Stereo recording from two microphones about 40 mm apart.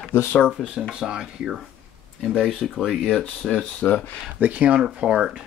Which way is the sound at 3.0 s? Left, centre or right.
Centre.